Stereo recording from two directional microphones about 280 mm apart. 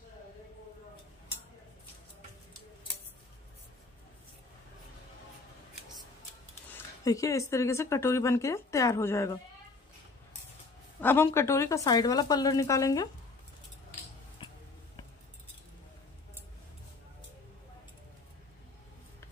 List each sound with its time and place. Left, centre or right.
7.1 s speech: centre
11.0 s speech: centre
14.4 s a sound: centre